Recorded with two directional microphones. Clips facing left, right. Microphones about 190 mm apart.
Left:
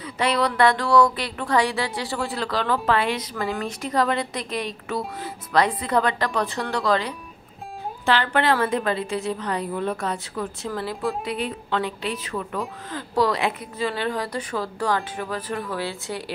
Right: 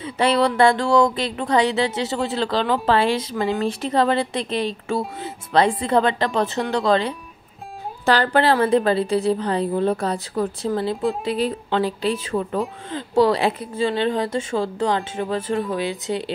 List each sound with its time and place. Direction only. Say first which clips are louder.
0.0 s speech: right 4 dB; 30° right (ahead or behind)
8.0 s a woman's voice: right 4 dB; 40° right (ahead or behind); by 16.3 s 20° right (ahead or behind)